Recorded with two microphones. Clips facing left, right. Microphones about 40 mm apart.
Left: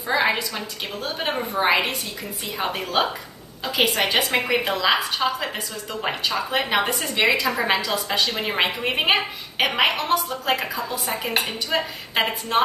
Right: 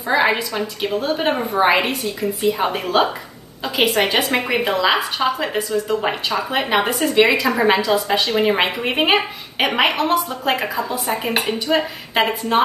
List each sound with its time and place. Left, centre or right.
0.1 s a woman's voice: centre
0.6 s a woman's voice: right
1.0 s a woman's voice: centre